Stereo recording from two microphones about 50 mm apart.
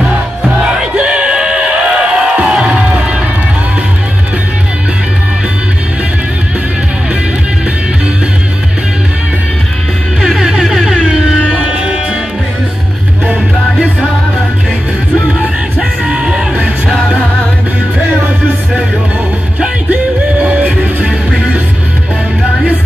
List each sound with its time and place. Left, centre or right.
0.7 s music: centre
10.2 s music: centre
11.5 s music: right
15.8 s music: centre
20.4 s music: right